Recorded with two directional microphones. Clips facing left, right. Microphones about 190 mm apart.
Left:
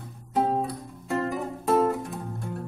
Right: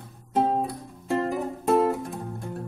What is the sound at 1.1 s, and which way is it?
Music, 25° right (ahead or behind).